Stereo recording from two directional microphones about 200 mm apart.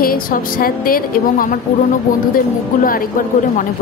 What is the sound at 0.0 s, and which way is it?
A woman's voice, 45° left (ahead or behind).